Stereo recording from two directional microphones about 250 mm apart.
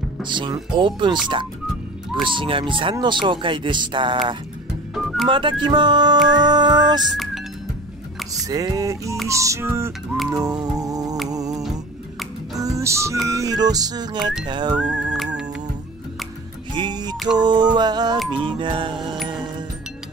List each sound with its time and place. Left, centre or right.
0.2 s speech: centre
2.2 s speech: centre
4.9 s music: centre
5.3 s speech: centre
6.2 s music: centre
8.3 s music: centre
14.8 s whistling: centre
16.7 s music: centre
18.3 s speech: centre